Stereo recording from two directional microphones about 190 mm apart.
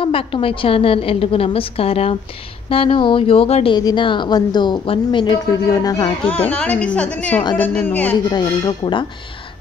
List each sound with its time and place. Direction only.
0.0 s a woman's voice: 30° left (ahead or behind)
6.2 s a woman's voice: 10° left (ahead or behind)
8.3 s a woman's voice: 25° left (ahead or behind)